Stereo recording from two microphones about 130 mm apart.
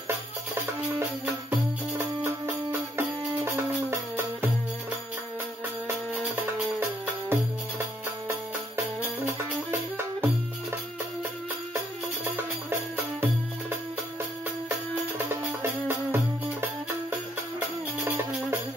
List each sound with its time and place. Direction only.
0.9 s music: 20° right (ahead or behind)
5.9 s music: 20° right (ahead or behind)
9.0 s music: 15° right (ahead or behind)
12.6 s music: 15° right (ahead or behind)
15.1 s music: 15° right (ahead or behind)
18.0 s music: 15° right (ahead or behind)